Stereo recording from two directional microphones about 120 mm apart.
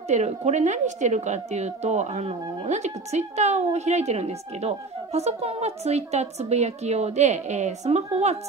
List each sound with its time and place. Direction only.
0.1 s a woman's voice: 75° right (ahead or behind)